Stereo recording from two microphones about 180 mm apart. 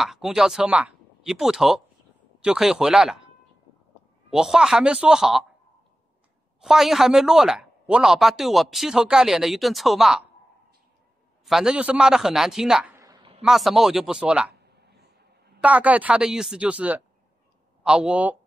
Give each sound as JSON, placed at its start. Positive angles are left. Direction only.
{"t": 0.0, "sound": "speech", "side_deg": 0}
{"t": 4.3, "sound": "speech", "side_deg": -5}
{"t": 6.6, "sound": "speech", "side_deg": 0}
{"t": 11.4, "sound": "speech", "side_deg": -5}
{"t": 13.0, "sound": "a sound", "side_deg": -25}
{"t": 13.4, "sound": "speech", "side_deg": 0}
{"t": 15.6, "sound": "speech", "side_deg": -10}